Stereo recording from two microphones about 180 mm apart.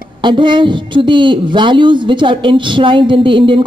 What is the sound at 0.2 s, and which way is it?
A woman's voice, 25° right (ahead or behind).